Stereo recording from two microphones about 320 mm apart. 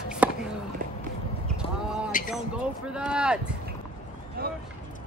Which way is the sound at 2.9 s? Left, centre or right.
Centre.